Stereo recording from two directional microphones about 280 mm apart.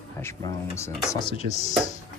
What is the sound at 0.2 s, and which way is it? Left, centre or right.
Speech, centre.